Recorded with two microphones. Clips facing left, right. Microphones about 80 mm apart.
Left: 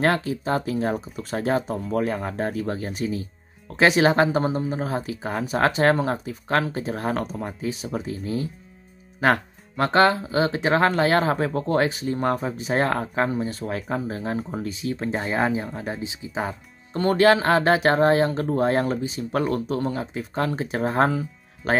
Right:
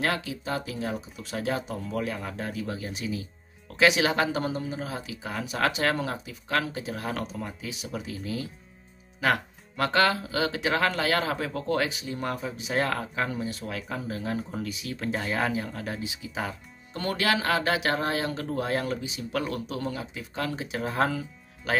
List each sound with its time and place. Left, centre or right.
0.0 s speech: left